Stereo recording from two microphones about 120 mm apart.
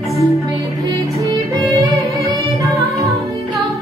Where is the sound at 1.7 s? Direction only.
25° right (ahead or behind).